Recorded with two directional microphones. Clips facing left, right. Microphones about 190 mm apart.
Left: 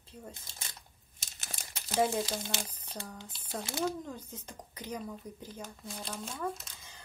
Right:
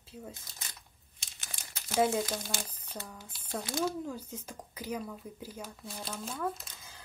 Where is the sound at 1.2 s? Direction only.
40° left (ahead or behind).